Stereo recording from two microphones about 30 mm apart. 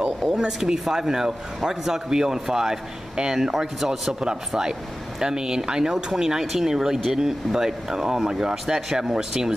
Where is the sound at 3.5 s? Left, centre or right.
Centre.